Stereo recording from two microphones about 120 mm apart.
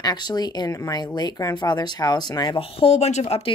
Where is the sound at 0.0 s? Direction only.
35° left (ahead or behind).